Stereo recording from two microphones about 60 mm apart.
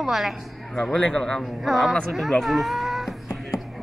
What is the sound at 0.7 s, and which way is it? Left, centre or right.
Speech, centre.